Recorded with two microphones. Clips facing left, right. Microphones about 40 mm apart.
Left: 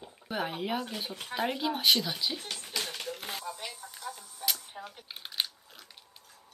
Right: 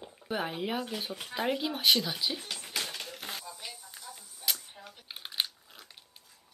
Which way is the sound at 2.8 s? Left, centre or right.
Centre.